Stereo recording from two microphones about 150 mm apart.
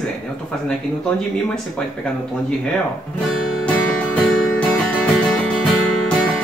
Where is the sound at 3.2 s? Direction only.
5° left (ahead or behind).